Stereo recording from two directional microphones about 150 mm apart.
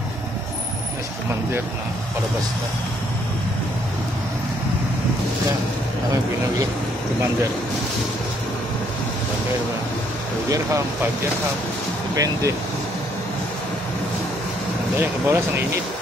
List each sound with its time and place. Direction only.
10.5 s speech: 20° right (ahead or behind)
12.2 s speech: 20° right (ahead or behind)
15.0 s speech: 15° right (ahead or behind)